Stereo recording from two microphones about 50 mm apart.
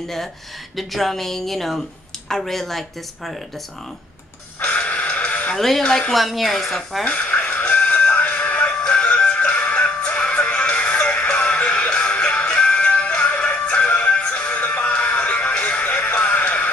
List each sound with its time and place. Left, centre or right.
0.7 s a woman's voice: centre
4.6 s music: left
5.6 s a woman's voice: centre
5.9 s speech: centre
6.1 s a woman's voice: centre
7.1 s music: left